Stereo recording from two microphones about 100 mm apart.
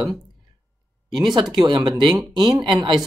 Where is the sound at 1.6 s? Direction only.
45° right (ahead or behind).